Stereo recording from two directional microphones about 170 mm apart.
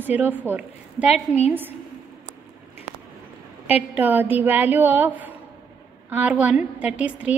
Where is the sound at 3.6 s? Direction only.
10° right (ahead or behind).